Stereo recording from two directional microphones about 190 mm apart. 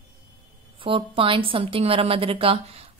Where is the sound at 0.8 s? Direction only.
30° right (ahead or behind).